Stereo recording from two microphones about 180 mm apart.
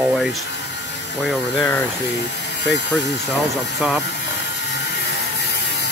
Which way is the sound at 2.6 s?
75° left (ahead or behind).